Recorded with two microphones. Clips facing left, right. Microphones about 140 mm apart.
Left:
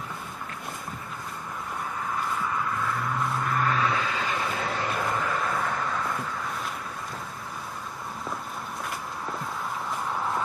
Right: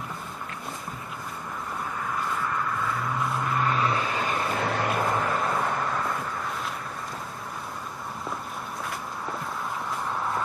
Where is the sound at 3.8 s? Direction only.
40° right (ahead or behind); by 4.9 s 55° right (ahead or behind).